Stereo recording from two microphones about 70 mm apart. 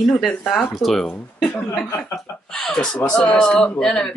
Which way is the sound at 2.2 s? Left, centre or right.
Centre.